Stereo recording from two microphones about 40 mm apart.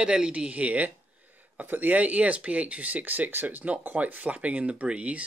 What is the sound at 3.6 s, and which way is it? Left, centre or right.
Speech, right.